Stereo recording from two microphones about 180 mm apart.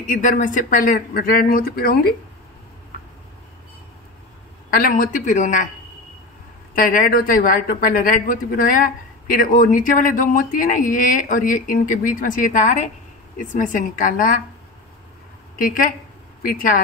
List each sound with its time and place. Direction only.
0.0 s speech: 45° left (ahead or behind)
4.6 s speech: 55° left (ahead or behind)
6.7 s speech: 50° left (ahead or behind)
15.5 s a woman's voice: 50° left (ahead or behind)